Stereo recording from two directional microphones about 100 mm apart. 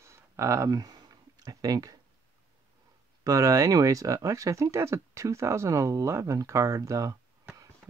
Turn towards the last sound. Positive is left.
turn(degrees=-35)  # may be behind; listen again after turning